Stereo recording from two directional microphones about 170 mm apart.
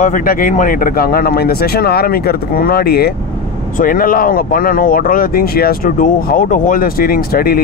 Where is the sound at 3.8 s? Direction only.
55° left (ahead or behind).